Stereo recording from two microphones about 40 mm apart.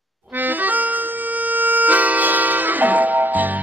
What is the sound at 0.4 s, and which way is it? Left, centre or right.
Accordion, right.